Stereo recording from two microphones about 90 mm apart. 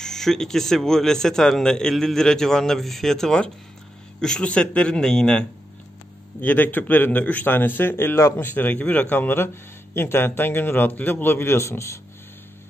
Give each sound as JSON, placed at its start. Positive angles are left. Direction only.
{"t": 0.0, "sound": "a man's voice", "side_deg": 5}